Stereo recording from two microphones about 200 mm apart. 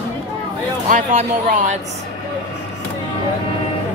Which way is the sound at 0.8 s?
40° right (ahead or behind).